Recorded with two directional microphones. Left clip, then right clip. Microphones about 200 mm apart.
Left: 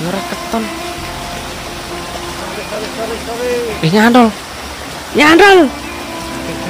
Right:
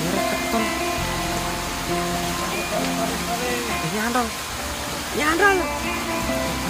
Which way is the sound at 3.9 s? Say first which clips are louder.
Left 18 dB; 50° left (ahead or behind).